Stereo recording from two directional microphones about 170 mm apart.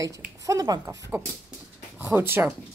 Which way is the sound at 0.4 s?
20° right (ahead or behind).